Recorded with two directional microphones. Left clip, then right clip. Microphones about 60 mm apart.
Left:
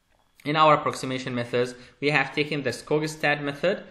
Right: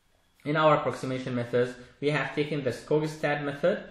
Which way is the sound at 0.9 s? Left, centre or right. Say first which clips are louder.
Left 2 dB; left.